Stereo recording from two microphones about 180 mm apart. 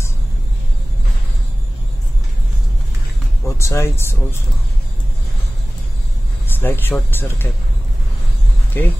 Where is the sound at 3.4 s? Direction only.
15° left (ahead or behind).